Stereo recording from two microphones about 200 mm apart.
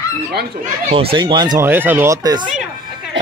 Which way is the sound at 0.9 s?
30° right (ahead or behind).